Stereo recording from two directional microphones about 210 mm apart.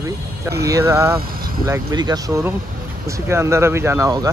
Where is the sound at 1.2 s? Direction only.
45° right (ahead or behind).